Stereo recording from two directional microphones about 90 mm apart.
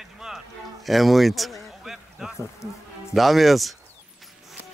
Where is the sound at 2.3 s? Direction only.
30° left (ahead or behind).